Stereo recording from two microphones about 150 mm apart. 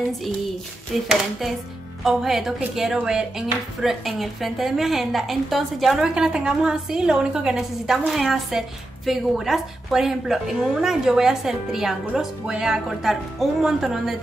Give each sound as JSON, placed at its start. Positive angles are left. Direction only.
{"t": 0.9, "sound": "speech", "side_deg": 0}